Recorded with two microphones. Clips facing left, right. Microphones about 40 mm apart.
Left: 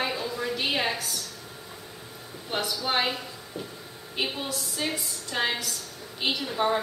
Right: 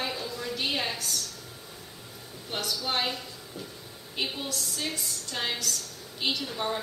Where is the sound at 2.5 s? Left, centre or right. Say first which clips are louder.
Left 3 dB; centre.